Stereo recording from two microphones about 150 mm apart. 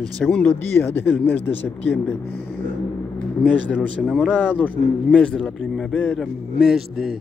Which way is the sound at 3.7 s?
5° left (ahead or behind).